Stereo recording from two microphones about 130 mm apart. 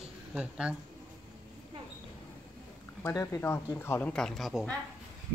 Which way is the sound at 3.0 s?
20° left (ahead or behind).